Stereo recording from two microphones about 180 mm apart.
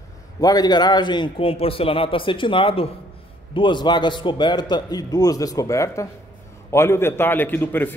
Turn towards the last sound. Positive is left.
turn(degrees=10)  # may be behind; listen again after turning